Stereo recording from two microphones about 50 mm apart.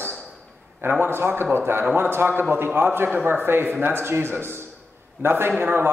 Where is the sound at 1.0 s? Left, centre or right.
Right.